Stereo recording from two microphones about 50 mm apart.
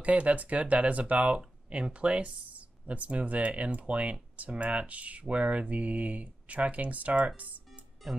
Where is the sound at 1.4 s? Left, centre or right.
Centre.